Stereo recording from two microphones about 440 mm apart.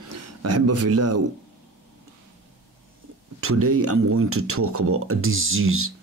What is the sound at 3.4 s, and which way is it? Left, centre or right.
A man's voice, right.